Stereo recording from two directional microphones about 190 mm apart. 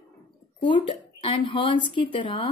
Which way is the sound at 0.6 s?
25° left (ahead or behind).